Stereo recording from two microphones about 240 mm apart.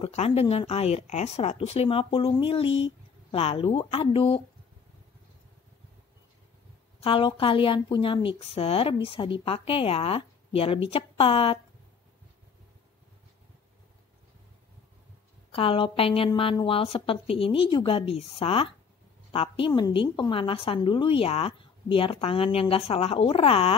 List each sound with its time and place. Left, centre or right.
0.0 s a woman's voice: left
7.0 s a woman's voice: left
15.5 s a woman's voice: left